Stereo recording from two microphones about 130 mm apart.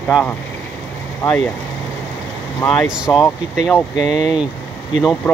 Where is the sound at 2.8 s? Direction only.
5° right (ahead or behind).